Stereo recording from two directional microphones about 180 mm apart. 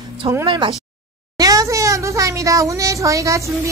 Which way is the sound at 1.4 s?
20° right (ahead or behind).